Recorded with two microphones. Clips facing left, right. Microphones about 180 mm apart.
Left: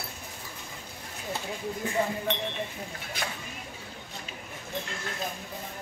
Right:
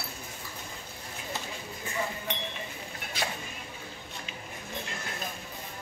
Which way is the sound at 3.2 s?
50° left (ahead or behind).